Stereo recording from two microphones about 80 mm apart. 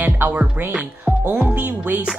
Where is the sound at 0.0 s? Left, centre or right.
Right.